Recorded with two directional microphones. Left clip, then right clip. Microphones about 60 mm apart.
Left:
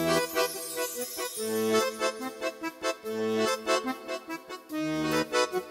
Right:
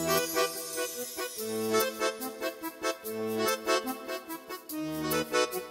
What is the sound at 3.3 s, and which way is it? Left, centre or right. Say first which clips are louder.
Accordion: even; left.